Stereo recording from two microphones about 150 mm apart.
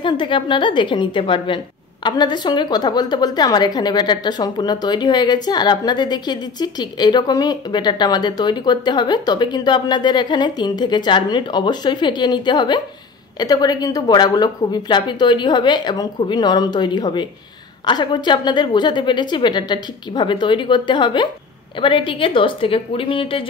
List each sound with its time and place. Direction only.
0.0 s a woman's voice: 35° left (ahead or behind)